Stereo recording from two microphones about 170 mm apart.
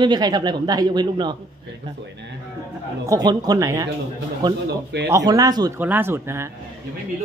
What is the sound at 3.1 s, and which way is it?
Speech, 25° right (ahead or behind).